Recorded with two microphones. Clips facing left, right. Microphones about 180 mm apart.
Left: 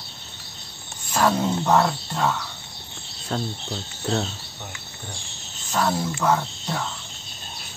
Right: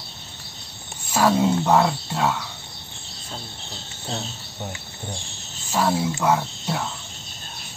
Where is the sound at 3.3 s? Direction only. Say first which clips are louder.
Left 10 dB; 70° left (ahead or behind).